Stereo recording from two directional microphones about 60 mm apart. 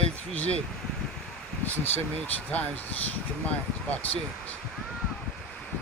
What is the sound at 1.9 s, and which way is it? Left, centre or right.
Speech, left.